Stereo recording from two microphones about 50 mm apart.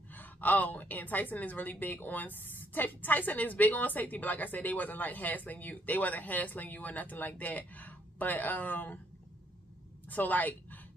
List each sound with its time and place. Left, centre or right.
0.1 s a woman's voice: left
10.0 s a woman's voice: left